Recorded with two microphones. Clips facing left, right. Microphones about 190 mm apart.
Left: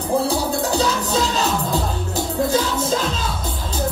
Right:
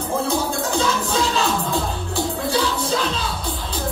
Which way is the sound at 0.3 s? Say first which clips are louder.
Left 1 dB; 35° left (ahead or behind).